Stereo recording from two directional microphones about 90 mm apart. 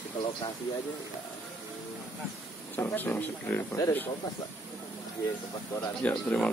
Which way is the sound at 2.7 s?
25° left (ahead or behind).